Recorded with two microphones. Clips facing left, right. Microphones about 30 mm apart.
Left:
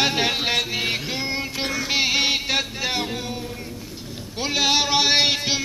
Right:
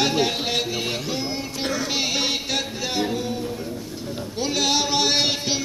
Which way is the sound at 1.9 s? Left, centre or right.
Left.